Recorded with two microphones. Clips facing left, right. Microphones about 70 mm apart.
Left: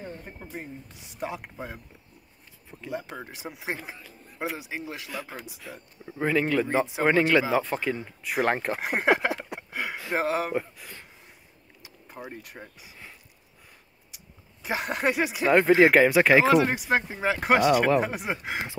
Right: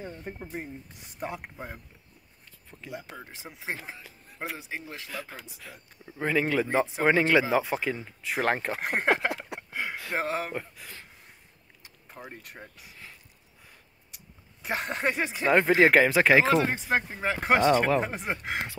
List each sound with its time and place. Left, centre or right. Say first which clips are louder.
0.6 s speech: left 2 dB; right
1.1 s speech: left 2 dB; centre
2.9 s speech: left 6 dB; centre
3.7 s speech: left 2 dB; centre
4.6 s speech: left 3 dB; centre
5.1 s speech: left 2 dB; centre
6.3 s speech: left 1 dB; centre
14.6 s speech: left 2 dB; centre
16.5 s speech: left 3 dB; centre